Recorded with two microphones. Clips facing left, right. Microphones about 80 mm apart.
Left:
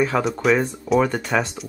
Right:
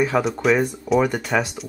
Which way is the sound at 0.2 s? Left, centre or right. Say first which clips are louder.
Even; centre.